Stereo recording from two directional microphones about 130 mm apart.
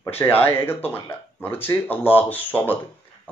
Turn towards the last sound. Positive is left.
turn(degrees=15)  # may be behind; listen again after turning